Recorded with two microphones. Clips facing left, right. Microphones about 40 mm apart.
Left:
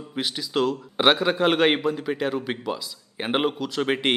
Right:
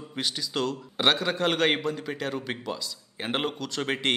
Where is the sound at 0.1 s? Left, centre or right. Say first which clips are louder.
Left 4 dB; centre.